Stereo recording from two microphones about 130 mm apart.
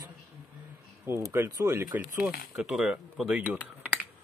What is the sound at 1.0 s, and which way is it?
Speech, 20° right (ahead or behind).